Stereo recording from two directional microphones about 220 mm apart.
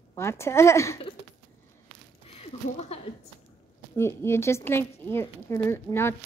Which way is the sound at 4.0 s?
10° left (ahead or behind).